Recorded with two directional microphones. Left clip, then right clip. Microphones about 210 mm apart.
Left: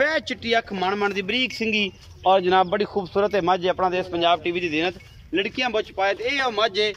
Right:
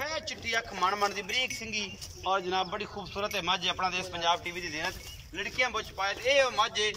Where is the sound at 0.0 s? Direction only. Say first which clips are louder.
Left 12 dB; 45° left (ahead or behind).